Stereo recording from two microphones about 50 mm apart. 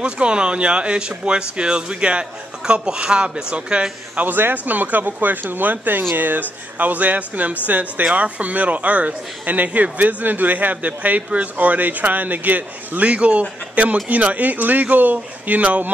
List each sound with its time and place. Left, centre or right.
0.0 s a man's voice: centre
4.2 s a man's voice: right